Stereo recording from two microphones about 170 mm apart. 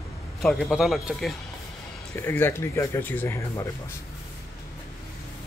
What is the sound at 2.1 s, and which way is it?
Speech, 15° left (ahead or behind).